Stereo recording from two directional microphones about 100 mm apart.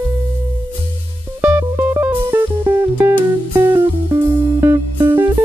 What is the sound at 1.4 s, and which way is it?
Music, 20° right (ahead or behind).